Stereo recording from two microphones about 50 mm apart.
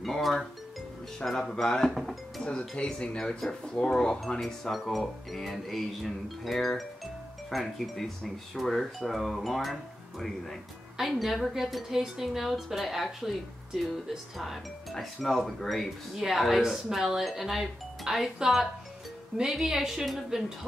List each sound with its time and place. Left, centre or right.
0.0 s music: centre
1.2 s speech: centre
1.9 s speech: centre
2.7 s speech: centre
14.4 s a woman's voice: centre